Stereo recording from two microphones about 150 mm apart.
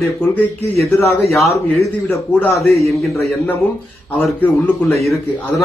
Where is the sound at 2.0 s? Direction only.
10° left (ahead or behind).